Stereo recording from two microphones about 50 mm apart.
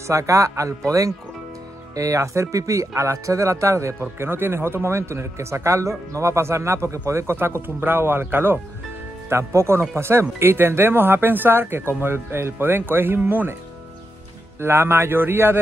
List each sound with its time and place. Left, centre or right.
0.0 s speech: right
2.0 s speech: right
7.3 s speech: right
9.3 s speech: right
14.6 s speech: right